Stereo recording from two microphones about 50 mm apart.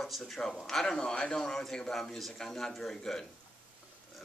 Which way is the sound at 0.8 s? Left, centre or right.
Centre.